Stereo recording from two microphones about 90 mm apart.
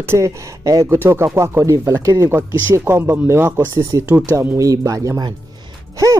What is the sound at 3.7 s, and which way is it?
Speech, 35° right (ahead or behind).